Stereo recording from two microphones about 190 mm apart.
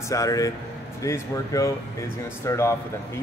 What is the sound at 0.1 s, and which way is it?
Speech, 15° left (ahead or behind).